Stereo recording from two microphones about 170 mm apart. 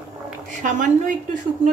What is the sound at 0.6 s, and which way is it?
A woman's voice, 50° right (ahead or behind).